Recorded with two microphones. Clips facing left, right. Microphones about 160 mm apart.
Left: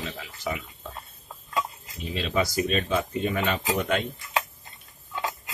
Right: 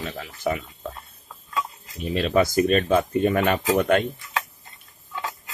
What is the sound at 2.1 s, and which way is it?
Speech, 50° right (ahead or behind).